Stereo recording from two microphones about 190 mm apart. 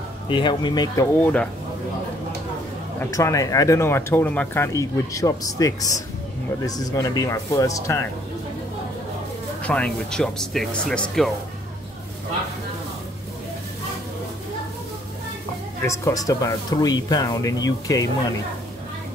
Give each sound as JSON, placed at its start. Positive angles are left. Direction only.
{"t": 0.3, "sound": "speech", "side_deg": 25}
{"t": 1.2, "sound": "speech", "side_deg": 5}
{"t": 3.0, "sound": "speech", "side_deg": 15}
{"t": 9.6, "sound": "speech", "side_deg": 5}
{"t": 15.8, "sound": "speech", "side_deg": 15}